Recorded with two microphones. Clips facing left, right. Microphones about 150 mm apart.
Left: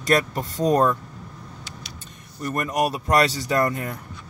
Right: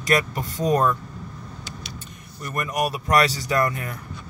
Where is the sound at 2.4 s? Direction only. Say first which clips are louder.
Left 2 dB; 35° left (ahead or behind).